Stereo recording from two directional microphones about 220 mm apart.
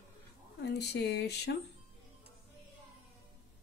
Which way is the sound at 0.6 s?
50° left (ahead or behind).